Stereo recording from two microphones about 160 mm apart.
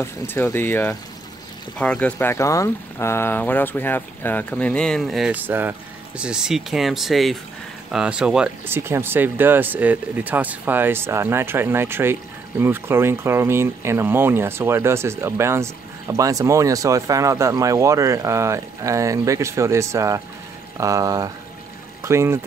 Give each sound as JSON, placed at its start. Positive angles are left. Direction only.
{"t": 0.0, "sound": "speech", "side_deg": 15}